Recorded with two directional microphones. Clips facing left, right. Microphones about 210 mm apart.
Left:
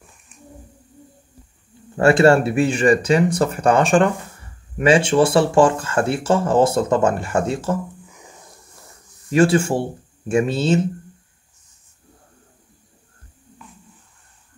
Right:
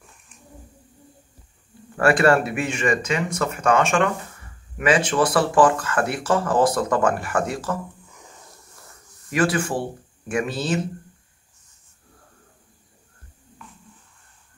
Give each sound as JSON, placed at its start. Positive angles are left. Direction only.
{"t": 2.0, "sound": "speech", "side_deg": 25}
{"t": 9.3, "sound": "speech", "side_deg": 25}